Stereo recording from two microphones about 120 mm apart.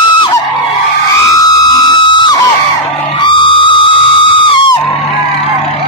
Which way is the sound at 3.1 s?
45° left (ahead or behind).